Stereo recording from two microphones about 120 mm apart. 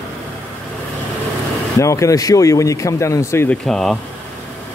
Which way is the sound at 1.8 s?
25° left (ahead or behind).